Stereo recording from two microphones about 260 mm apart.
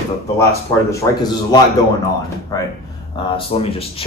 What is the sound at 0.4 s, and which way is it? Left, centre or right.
A man's voice, centre.